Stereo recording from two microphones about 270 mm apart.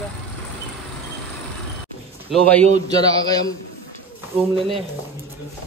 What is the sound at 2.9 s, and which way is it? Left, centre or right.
Speech, centre.